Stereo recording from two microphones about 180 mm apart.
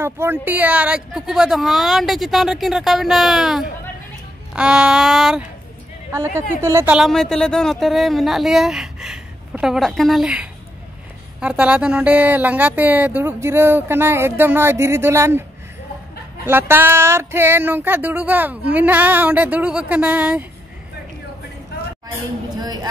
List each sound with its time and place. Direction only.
0.0 s speech: 10° right (ahead or behind)
6.1 s speech: 15° right (ahead or behind)
7.0 s speech: centre (ahead or behind); by 15.4 s 15° right (ahead or behind)
16.4 s speech: 10° right (ahead or behind)
22.6 s a woman's voice: 20° right (ahead or behind)